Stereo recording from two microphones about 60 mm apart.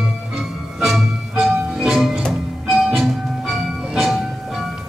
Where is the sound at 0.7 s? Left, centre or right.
Centre.